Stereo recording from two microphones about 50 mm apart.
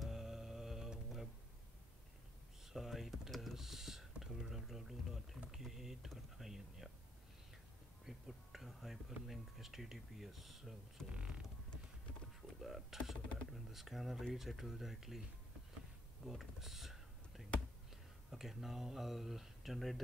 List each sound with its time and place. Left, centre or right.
0.0 s music: centre
2.6 s typing: centre
5.5 s speech: centre
8.0 s speech: centre
11.1 s a sound: centre
12.6 s speech: centre
16.3 s speech: centre
17.4 s a sound: centre
18.3 s speech: centre